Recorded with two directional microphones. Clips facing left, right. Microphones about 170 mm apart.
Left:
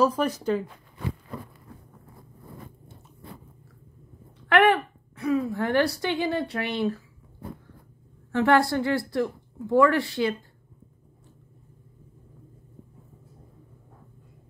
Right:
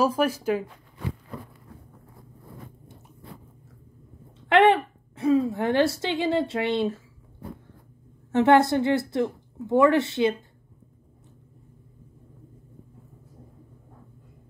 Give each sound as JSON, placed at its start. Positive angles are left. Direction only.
{"t": 0.0, "sound": "speech", "side_deg": -10}
{"t": 4.5, "sound": "a sound", "side_deg": -25}
{"t": 8.3, "sound": "a woman's voice", "side_deg": -20}